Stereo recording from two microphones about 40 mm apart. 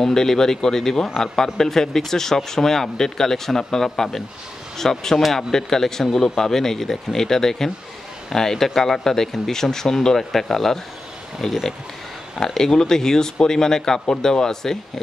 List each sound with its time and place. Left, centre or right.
0.0 s speech: centre